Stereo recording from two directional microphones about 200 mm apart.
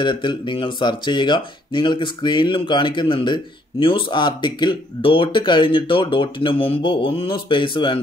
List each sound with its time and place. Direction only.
0.0 s speech: 25° left (ahead or behind)